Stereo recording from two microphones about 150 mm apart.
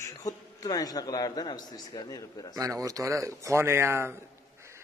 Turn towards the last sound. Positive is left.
turn(degrees=-15)  # may be behind; listen again after turning